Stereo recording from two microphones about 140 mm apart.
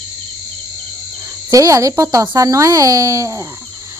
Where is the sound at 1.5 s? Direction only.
25° right (ahead or behind).